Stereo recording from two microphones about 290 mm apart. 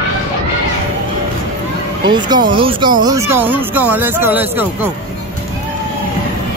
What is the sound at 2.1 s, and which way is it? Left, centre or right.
Speech, centre.